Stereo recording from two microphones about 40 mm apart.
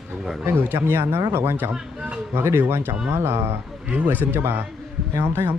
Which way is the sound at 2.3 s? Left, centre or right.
Right.